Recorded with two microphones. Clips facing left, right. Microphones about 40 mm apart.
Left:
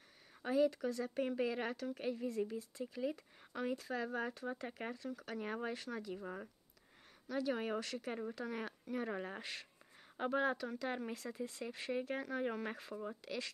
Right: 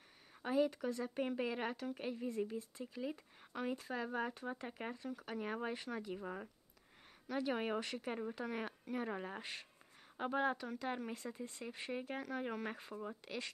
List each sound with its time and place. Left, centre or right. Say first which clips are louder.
0.4 s speech: left 2 dB; centre
2.2 s speech: right 1 dB; centre
2.8 s speech: left 7 dB; centre
4.6 s speech: left 1 dB; centre
4.9 s speech: even; centre
5.4 s speech: even; centre
5.7 s speech: even; centre
7.2 s speech: even; right
8.1 s speech: right 1 dB; centre
9.4 s speech: left 1 dB; centre
10.2 s speech: left 1 dB; centre
11.1 s speech: left 3 dB; centre
13.2 s speech: left 2 dB; centre